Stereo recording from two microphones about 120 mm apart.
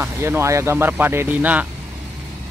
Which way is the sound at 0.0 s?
20° right (ahead or behind).